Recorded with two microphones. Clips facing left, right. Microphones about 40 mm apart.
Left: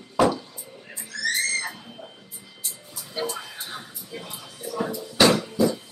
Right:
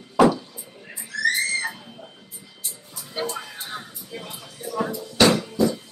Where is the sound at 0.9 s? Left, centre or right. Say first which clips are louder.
Right 5 dB; centre.